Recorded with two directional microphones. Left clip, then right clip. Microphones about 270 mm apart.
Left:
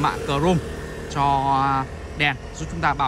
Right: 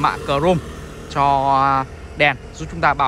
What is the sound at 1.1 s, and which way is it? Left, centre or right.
Speech, centre.